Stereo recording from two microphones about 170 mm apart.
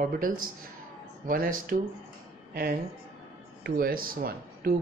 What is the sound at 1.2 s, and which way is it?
Speech, 55° right (ahead or behind).